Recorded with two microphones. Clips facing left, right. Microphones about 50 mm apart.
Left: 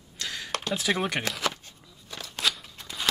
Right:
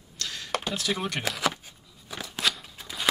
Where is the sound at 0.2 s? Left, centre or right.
Centre.